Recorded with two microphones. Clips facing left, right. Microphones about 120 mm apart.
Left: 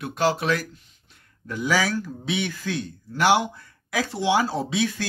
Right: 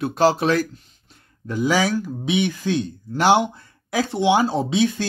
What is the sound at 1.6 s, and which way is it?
Speech, 20° right (ahead or behind).